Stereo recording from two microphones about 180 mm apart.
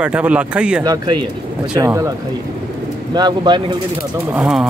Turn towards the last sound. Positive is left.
turn(degrees=-5)  # may be behind; listen again after turning